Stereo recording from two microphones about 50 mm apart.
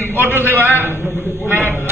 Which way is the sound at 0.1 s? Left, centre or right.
Right.